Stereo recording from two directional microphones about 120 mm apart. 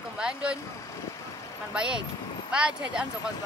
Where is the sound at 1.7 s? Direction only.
10° right (ahead or behind).